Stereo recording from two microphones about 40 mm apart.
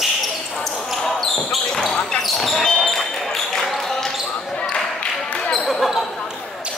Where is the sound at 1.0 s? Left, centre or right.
Centre.